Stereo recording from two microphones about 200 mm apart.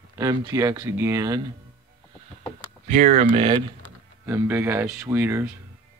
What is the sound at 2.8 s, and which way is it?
Speech, 40° right (ahead or behind).